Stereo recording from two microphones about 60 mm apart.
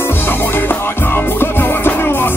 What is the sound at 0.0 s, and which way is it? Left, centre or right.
Music, left.